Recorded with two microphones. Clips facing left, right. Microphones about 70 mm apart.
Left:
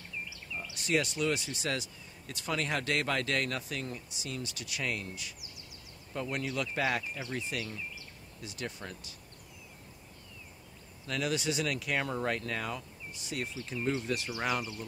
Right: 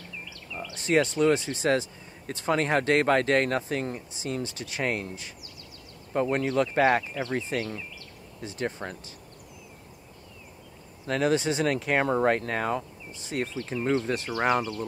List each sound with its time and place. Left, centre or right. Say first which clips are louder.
0.7 s speech: right 8 dB; right
11.1 s speech: right 8 dB; right